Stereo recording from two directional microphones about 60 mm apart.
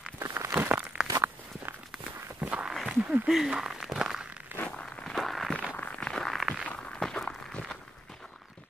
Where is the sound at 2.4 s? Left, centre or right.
Right.